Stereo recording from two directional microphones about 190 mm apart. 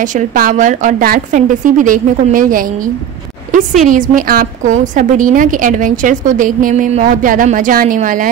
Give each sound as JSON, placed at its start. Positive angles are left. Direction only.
{"t": 0.0, "sound": "a woman's voice", "side_deg": -40}